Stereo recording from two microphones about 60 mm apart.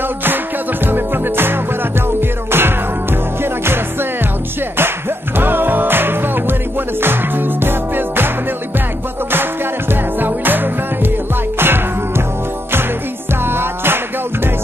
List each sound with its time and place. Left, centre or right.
0.8 s music: right
9.3 s music: right
13.3 s music: right